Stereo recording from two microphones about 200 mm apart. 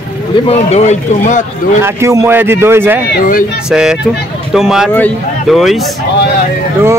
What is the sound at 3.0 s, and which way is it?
Speech, 50° left (ahead or behind).